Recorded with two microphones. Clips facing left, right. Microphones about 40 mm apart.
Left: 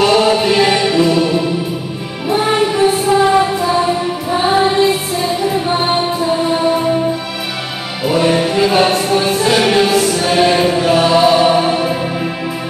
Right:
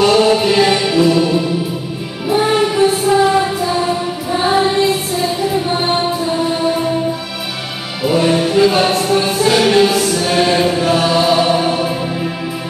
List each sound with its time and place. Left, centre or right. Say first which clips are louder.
0.0 s music: even; centre
8.0 s music: even; centre